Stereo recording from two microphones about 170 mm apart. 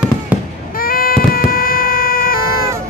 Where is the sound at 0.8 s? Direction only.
60° left (ahead or behind).